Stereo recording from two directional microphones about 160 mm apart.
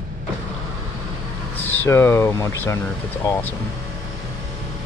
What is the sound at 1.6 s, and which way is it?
Speech, 15° left (ahead or behind).